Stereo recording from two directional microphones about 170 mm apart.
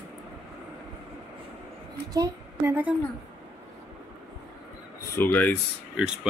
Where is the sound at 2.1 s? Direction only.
20° right (ahead or behind).